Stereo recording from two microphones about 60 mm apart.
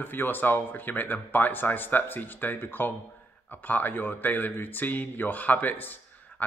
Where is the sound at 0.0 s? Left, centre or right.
Left.